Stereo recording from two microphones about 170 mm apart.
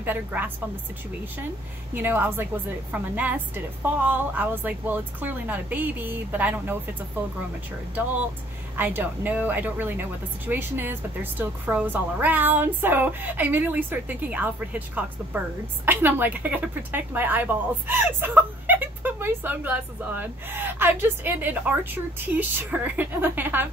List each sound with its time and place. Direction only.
0.0 s a woman's voice: 10° right (ahead or behind)
2.0 s a woman's voice: 10° right (ahead or behind)
8.7 s a woman's voice: 10° right (ahead or behind)